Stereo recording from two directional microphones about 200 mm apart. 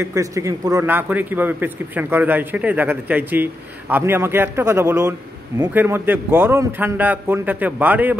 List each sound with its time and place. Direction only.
0.0 s a man's voice: 15° right (ahead or behind)